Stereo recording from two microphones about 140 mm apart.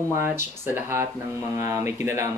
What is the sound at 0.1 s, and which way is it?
Speech, 15° right (ahead or behind).